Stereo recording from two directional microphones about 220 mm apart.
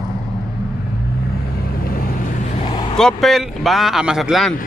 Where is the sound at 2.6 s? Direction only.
25° left (ahead or behind).